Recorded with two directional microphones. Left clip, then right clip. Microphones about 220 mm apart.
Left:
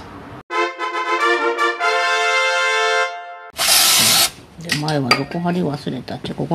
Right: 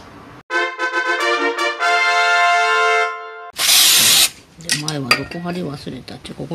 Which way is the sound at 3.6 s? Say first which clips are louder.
Right 2 dB; 10° left (ahead or behind).